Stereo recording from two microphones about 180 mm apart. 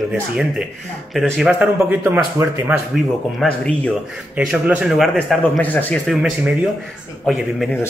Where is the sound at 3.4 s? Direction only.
Centre (ahead or behind).